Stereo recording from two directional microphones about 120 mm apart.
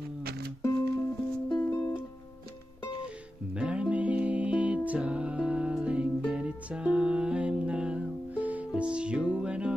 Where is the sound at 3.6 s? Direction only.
10° right (ahead or behind).